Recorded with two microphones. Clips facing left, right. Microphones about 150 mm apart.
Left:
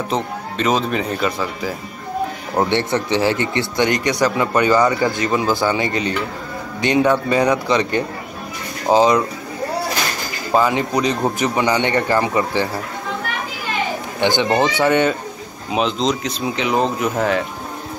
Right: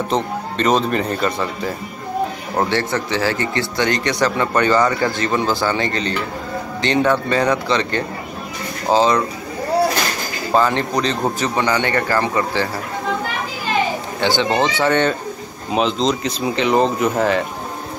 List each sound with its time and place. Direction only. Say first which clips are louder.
0.1 s speech: right 2 dB; centre (ahead or behind)
2.7 s speech: left 2 dB; 20° left (ahead or behind)
4.1 s a man's voice: left 1 dB; 5° left (ahead or behind)
5.3 s speech: left 1 dB; centre (ahead or behind)
5.7 s a man's voice: left 1 dB; 15° left (ahead or behind)
10.5 s a man's voice: even; 5° left (ahead or behind)
14.2 s a man's voice: left 1 dB; 15° left (ahead or behind)
15.7 s speech: right 1 dB; centre (ahead or behind)